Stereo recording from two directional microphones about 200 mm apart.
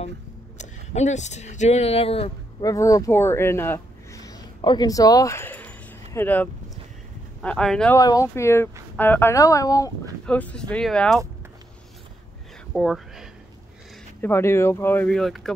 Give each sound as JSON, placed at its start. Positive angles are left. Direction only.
{"t": 0.6, "sound": "speech", "side_deg": 35}
{"t": 2.6, "sound": "speech", "side_deg": 15}
{"t": 8.0, "sound": "speech", "side_deg": 15}
{"t": 10.2, "sound": "speech", "side_deg": 5}
{"t": 12.7, "sound": "a sound", "side_deg": 0}
{"t": 14.2, "sound": "speech", "side_deg": 10}